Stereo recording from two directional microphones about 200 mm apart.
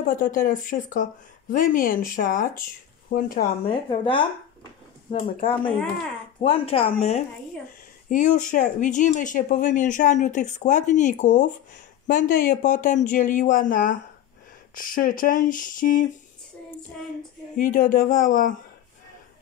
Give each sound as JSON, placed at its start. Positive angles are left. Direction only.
{"t": 0.1, "sound": "speech", "side_deg": 45}
{"t": 3.6, "sound": "speech", "side_deg": 25}
{"t": 5.4, "sound": "speech", "side_deg": 25}
{"t": 17.6, "sound": "speech", "side_deg": 40}